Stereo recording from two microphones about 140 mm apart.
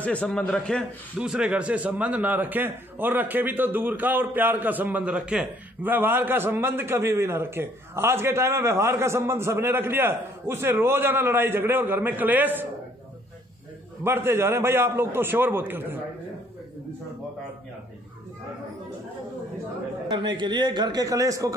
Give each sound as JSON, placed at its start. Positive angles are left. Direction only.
{"t": 0.0, "sound": "a man's voice", "side_deg": 10}
{"t": 1.1, "sound": "a man's voice", "side_deg": -5}
{"t": 14.0, "sound": "a man's voice", "side_deg": -15}
{"t": 20.1, "sound": "a man's voice", "side_deg": -35}